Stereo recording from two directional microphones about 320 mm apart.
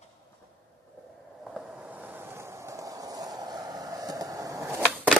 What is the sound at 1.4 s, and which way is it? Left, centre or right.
Train, centre.